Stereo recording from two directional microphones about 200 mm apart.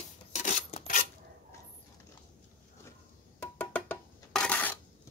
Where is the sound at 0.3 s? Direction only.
35° left (ahead or behind).